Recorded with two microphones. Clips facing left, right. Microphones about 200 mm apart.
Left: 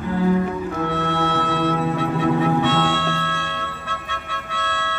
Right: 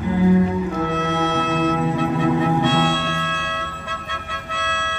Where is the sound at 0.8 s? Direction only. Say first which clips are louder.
Right 1 dB; 20° right (ahead or behind).